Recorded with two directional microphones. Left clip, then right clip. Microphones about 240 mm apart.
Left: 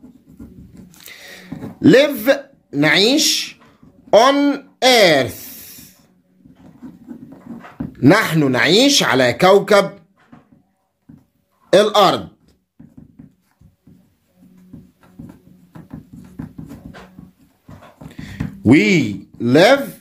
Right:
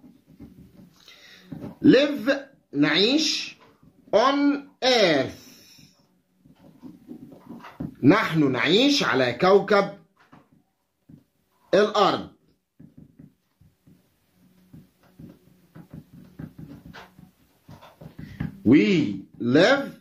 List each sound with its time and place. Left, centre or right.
1.0 s speech: left
8.0 s speech: left
11.7 s speech: left
18.7 s speech: left